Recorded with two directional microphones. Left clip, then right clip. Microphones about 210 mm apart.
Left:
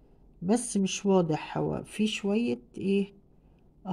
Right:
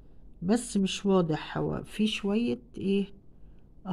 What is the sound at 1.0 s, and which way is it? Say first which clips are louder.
Speech: left 1 dB; 5° left (ahead or behind).